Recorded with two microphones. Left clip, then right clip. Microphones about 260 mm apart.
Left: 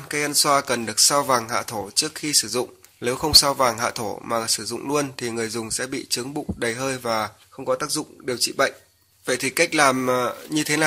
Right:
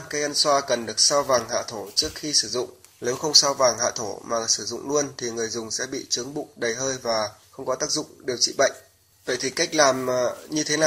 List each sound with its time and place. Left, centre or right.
0.1 s speech: left